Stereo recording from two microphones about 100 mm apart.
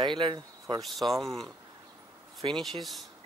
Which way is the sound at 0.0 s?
55° right (ahead or behind).